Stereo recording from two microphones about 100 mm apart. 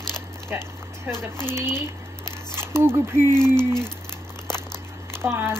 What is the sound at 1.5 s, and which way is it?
A woman's voice, 25° right (ahead or behind).